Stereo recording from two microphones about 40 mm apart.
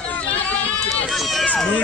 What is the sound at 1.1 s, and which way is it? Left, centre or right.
Run, centre.